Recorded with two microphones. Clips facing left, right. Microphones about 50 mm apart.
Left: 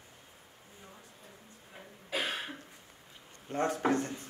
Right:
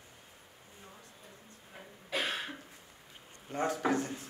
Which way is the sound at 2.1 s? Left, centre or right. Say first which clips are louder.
Even; centre.